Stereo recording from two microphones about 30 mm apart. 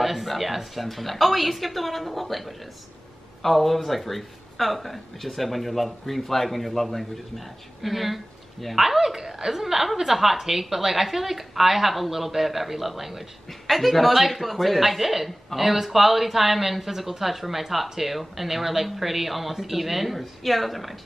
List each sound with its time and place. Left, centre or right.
0.0 s speech: centre